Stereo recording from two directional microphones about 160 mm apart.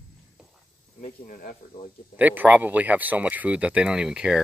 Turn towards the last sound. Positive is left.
turn(degrees=-5)  # may be behind; listen again after turning